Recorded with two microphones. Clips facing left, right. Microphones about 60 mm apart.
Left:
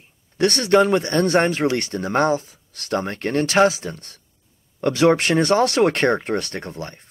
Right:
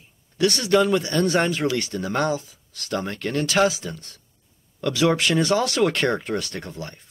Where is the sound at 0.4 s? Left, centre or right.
Left.